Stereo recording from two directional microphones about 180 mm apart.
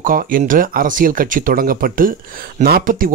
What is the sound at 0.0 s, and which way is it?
Speech, 50° right (ahead or behind).